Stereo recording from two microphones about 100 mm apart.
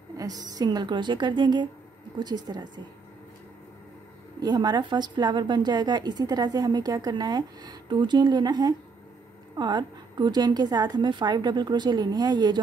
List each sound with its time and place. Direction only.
0.2 s a woman's voice: 40° right (ahead or behind)
4.4 s a woman's voice: 45° right (ahead or behind)